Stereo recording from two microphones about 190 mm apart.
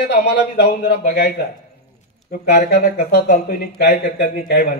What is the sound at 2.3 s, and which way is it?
Speech, 50° left (ahead or behind).